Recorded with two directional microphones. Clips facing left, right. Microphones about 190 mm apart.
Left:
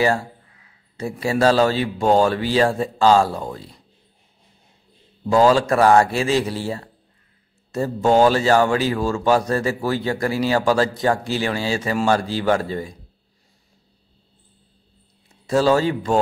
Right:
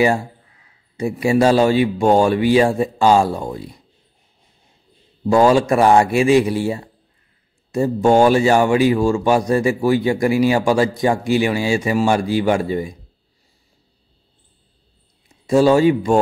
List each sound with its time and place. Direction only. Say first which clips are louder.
0.9 s speech: right 5 dB; 15° right (ahead or behind)
5.2 s speech: right 2 dB; 15° right (ahead or behind)
15.4 s speech: right 5 dB; 15° right (ahead or behind)